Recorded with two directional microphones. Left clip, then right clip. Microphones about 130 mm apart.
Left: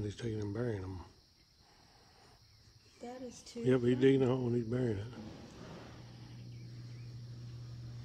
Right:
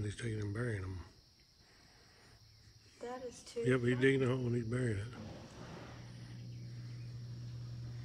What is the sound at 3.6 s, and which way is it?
Speech, 25° left (ahead or behind).